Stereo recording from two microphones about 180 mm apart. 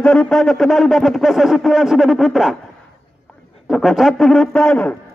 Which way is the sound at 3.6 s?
Centre (ahead or behind).